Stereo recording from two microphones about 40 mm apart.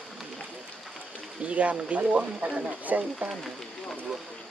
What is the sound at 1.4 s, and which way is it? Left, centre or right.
Speech, right.